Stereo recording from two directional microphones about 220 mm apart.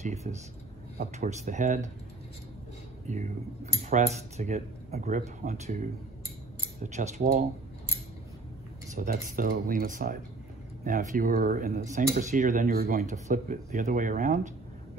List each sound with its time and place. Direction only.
0.0 s speech: 30° right (ahead or behind)
3.1 s speech: 30° right (ahead or behind)
8.9 s speech: 40° right (ahead or behind)